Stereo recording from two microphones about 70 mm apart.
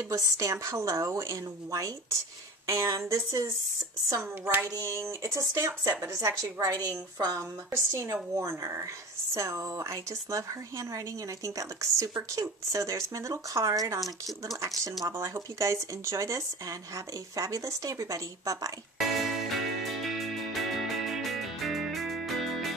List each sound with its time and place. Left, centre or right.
0.1 s speech: right
4.8 s speech: right
6.8 s a woman's voice: right
7.3 s speech: right
15.0 s speech: right
18.9 s music: centre